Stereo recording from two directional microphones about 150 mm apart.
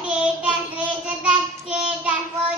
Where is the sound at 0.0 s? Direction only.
5° right (ahead or behind).